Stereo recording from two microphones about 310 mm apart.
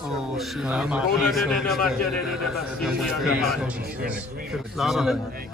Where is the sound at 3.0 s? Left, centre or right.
Centre.